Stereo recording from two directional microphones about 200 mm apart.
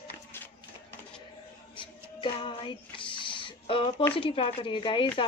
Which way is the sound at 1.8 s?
25° left (ahead or behind).